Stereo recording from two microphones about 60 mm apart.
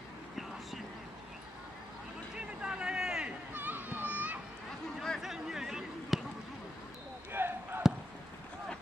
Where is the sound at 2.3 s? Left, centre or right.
Centre.